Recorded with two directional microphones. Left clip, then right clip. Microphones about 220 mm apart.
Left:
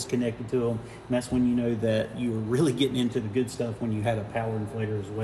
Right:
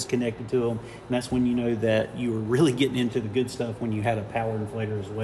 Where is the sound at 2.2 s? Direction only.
20° right (ahead or behind).